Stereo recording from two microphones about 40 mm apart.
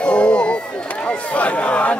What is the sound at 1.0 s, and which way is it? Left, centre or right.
Speech, left.